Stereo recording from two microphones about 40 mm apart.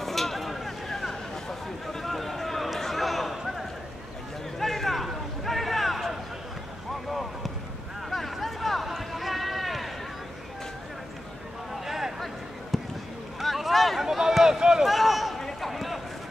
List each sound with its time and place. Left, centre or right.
0.0 s a sound: centre
7.1 s basketball bounce: centre
8.1 s run: centre
11.7 s a sound: centre
12.7 s fireworks: centre
13.4 s boat: centre
14.0 s run: centre
14.9 s a sound: centre
15.3 s run: centre